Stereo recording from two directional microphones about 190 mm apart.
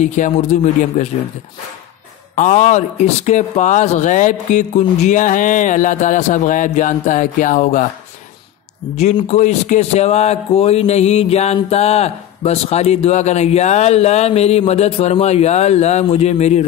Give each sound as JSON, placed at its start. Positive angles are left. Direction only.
{"t": 0.0, "sound": "speech", "side_deg": 40}
{"t": 2.3, "sound": "speech", "side_deg": 40}
{"t": 8.9, "sound": "speech", "side_deg": 35}